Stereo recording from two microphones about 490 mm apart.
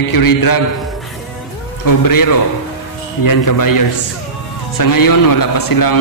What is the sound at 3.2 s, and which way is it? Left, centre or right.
A man's voice, left.